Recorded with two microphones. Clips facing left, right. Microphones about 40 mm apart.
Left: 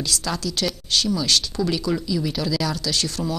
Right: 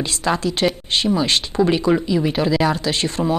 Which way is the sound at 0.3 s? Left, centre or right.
Right.